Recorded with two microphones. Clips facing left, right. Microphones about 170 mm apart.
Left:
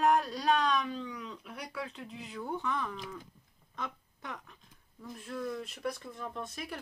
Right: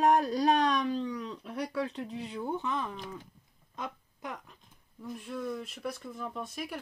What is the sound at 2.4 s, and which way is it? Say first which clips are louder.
Speech: right 1 dB; 20° right (ahead or behind).